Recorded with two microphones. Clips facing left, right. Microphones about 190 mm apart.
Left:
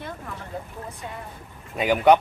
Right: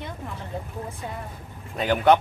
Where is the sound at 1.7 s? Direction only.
10° left (ahead or behind).